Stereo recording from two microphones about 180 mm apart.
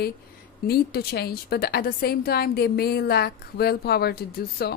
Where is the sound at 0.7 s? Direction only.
60° left (ahead or behind).